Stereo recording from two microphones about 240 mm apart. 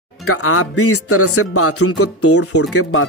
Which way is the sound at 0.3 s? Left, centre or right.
Left.